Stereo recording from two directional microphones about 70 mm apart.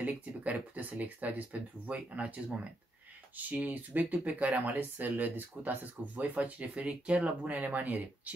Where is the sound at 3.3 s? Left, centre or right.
Right.